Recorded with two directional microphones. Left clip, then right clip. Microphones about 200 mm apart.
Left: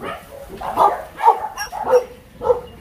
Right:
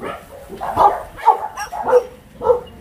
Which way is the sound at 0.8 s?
50° right (ahead or behind).